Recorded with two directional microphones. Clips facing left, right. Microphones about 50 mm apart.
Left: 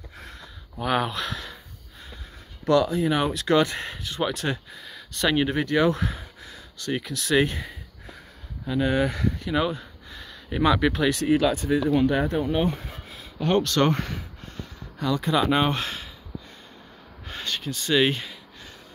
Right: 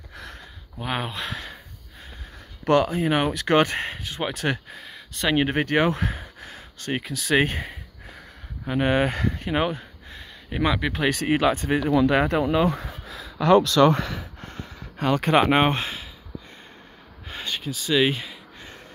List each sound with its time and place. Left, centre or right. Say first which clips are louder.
0.1 s a sound: right 5 dB; right
0.8 s speech: left 4 dB; centre
1.3 s a sound: right 1 dB; right
2.6 s speech: right 1 dB; right
4.5 s speech: right 2 dB; right
4.8 s a sound: left 1 dB; right
5.4 s speech: right 1 dB; right
10.2 s speech: left 2 dB; centre
11.0 s speech: left 1 dB; right
14.4 s a sound: right 2 dB; right
15.8 s speech: even; centre
17.3 s speech: even; centre